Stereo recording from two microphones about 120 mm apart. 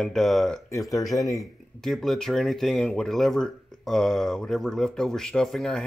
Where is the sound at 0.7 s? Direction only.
25° left (ahead or behind).